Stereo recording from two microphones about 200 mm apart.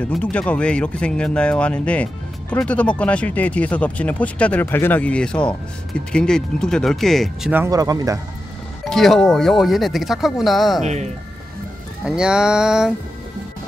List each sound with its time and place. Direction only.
0.0 s speech: 5° left (ahead or behind)
7.5 s speech: 15° right (ahead or behind)
8.8 s speech: centre (ahead or behind)
12.0 s speech: 5° right (ahead or behind)